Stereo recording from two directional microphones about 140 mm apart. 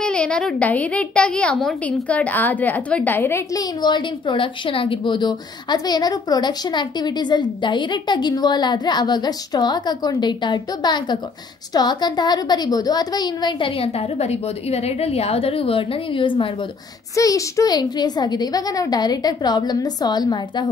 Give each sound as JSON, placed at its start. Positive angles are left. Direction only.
{"t": 0.0, "sound": "a woman's voice", "side_deg": 10}
{"t": 3.8, "sound": "speech", "side_deg": 35}
{"t": 17.1, "sound": "a woman's voice", "side_deg": 25}